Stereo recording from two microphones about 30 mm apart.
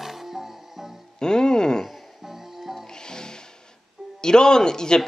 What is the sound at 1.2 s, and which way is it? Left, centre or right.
Music, left.